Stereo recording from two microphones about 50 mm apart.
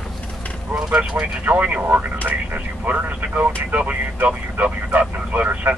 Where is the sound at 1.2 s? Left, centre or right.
Right.